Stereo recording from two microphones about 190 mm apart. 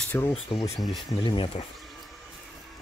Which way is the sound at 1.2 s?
25° left (ahead or behind).